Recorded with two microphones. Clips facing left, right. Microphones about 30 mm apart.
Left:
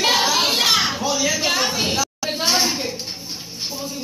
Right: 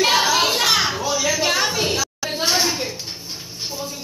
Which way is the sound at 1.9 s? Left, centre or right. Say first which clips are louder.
Left 1 dB; left.